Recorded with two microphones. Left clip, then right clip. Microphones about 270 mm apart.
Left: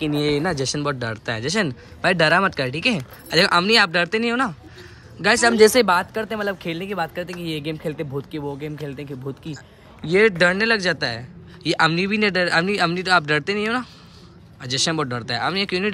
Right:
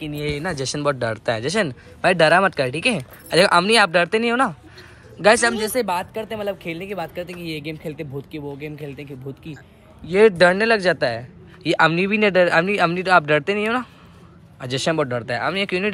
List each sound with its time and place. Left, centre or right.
0.0 s speech: centre
5.6 s speech: left
5.9 s speech: left
7.2 s speech: centre
10.1 s speech: centre